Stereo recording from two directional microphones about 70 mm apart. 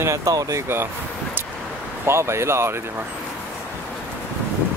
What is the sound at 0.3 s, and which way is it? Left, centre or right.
Speech, right.